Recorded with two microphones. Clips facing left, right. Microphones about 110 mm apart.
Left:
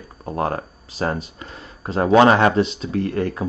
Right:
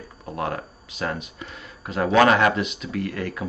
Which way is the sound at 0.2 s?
35° left (ahead or behind).